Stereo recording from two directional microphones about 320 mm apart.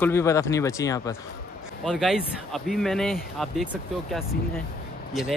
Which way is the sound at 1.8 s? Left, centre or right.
Centre.